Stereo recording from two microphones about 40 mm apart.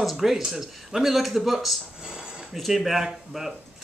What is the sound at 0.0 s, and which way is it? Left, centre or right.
Speech, centre.